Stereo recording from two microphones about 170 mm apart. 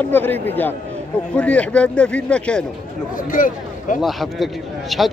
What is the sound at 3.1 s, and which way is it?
Speech, 55° left (ahead or behind).